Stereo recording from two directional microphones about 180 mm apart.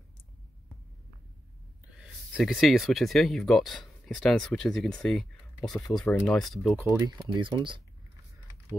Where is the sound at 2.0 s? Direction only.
Centre (ahead or behind).